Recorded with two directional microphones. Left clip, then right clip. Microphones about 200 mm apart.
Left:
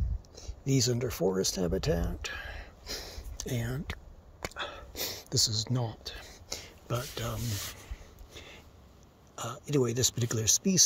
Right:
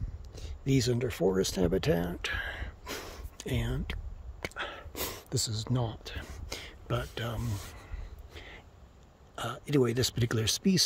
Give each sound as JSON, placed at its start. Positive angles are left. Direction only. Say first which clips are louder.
{"t": 0.3, "sound": "speech", "louder": "right 1 dB", "side_deg": -20}
{"t": 3.3, "sound": "a sound", "louder": "right 1 dB", "side_deg": -15}
{"t": 4.9, "sound": "whispering", "louder": "left 2 dB", "side_deg": -25}
{"t": 5.3, "sound": "speech", "louder": "left 6 dB", "side_deg": -10}
{"t": 8.3, "sound": "a sound", "louder": "right 1 dB", "side_deg": -15}
{"t": 9.3, "sound": "speech", "louder": "right 1 dB", "side_deg": -20}